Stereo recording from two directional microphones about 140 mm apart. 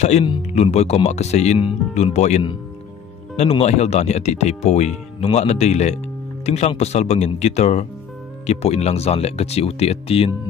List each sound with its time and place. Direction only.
0.5 s speech: 50° left (ahead or behind)